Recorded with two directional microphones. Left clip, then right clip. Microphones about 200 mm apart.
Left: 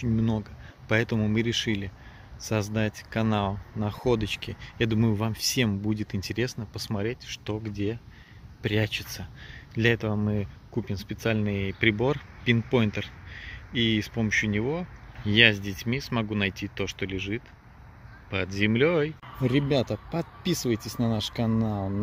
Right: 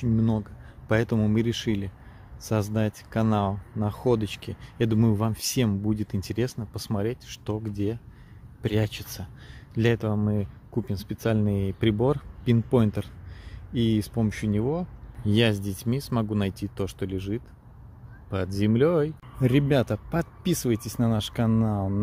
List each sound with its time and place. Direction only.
0.0 s speech: 15° right (ahead or behind)